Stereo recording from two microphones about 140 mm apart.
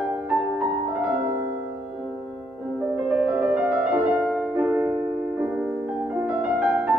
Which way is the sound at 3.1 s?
5° right (ahead or behind).